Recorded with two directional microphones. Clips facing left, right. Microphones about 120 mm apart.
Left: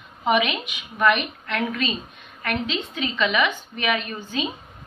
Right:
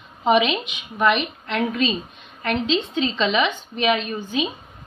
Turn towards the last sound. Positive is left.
turn(degrees=-20)  # may be behind; listen again after turning